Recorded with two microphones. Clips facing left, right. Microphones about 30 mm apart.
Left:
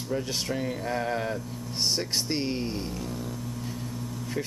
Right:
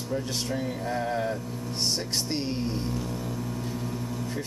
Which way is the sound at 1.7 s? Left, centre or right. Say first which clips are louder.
Left 1 dB; centre.